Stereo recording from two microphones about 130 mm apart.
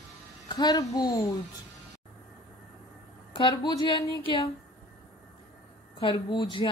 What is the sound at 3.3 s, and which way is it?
Speech, 35° left (ahead or behind).